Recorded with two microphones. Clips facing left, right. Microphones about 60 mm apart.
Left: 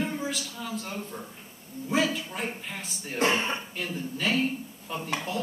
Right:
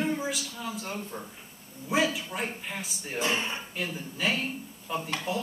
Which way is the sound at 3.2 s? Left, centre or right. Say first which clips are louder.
Left 4 dB; left.